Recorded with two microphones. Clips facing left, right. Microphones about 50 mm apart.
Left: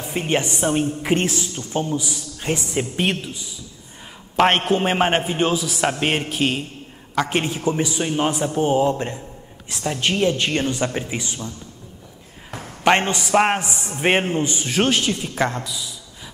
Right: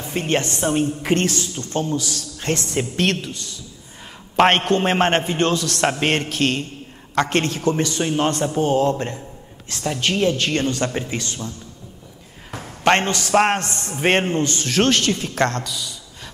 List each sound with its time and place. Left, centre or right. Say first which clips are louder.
0.0 s a woman's voice: even; centre
4.4 s a man's voice: right 1 dB; centre; by 10.6 s left
10.6 s a man's voice: right 1 dB; centre
12.4 s a sound: even; centre
12.9 s a man's voice: even; centre